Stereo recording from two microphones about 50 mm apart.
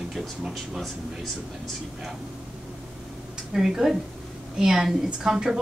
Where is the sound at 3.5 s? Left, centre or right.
Centre.